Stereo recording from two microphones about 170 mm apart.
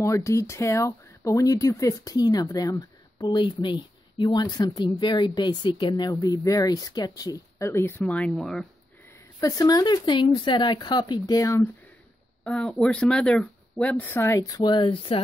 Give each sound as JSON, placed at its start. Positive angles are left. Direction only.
{"t": 0.0, "sound": "speech", "side_deg": 20}
{"t": 9.4, "sound": "speech", "side_deg": 20}
{"t": 12.4, "sound": "speech", "side_deg": 5}